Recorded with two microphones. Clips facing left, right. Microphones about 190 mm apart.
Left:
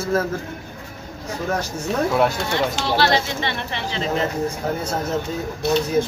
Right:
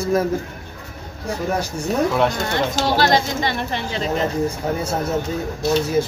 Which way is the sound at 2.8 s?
40° right (ahead or behind).